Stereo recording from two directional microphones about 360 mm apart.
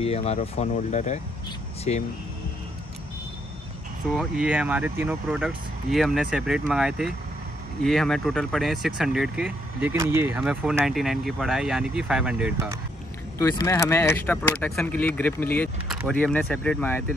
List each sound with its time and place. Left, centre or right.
0.0 s speech: centre
4.2 s speech: centre
13.4 s speech: centre